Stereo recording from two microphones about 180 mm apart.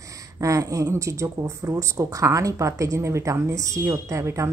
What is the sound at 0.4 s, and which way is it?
Speech, 20° right (ahead or behind).